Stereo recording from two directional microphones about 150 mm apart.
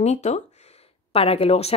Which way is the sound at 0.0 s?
45° left (ahead or behind).